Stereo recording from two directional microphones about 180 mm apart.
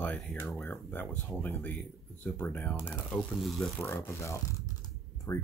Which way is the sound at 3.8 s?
15° left (ahead or behind).